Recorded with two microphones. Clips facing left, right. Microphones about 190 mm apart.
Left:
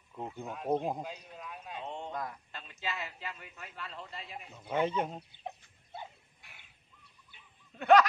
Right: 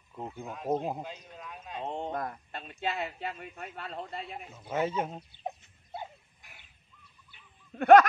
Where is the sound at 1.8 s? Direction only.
50° right (ahead or behind).